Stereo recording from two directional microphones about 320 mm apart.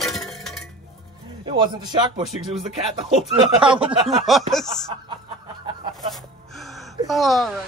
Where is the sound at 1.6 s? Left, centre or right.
Centre.